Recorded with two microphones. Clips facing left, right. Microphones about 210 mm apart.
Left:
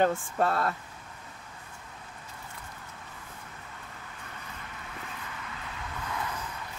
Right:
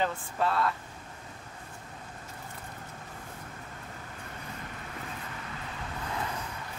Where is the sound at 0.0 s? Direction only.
50° left (ahead or behind).